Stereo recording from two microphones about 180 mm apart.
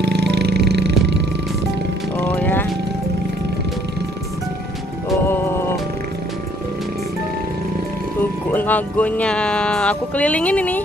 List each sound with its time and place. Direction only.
0.0 s a sound: 70° right (ahead or behind)
2.2 s music: 10° left (ahead or behind)
5.2 s music: 15° left (ahead or behind)
8.5 s speech: 10° left (ahead or behind)